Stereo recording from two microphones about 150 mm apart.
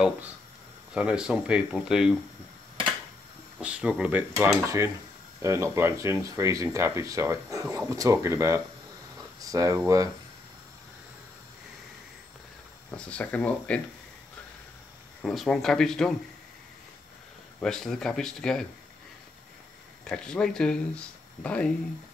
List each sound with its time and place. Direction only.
0.9 s speech: 5° right (ahead or behind)
3.6 s speech: 5° right (ahead or behind)
12.9 s speech: 10° left (ahead or behind)
15.2 s speech: centre (ahead or behind)
17.6 s speech: 5° left (ahead or behind)
20.1 s speech: 5° left (ahead or behind)